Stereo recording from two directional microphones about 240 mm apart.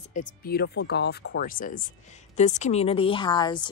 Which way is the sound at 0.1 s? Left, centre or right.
Left.